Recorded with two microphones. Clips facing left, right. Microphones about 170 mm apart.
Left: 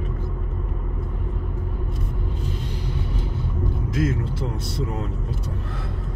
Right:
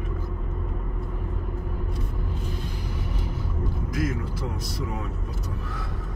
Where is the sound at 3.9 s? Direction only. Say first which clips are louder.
Left 4 dB; 25° left (ahead or behind).